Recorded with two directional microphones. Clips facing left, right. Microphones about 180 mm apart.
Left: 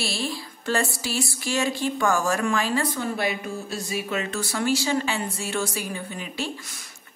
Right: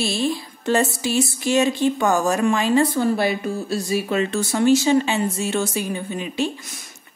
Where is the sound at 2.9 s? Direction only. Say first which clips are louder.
Right 7 dB; 35° right (ahead or behind).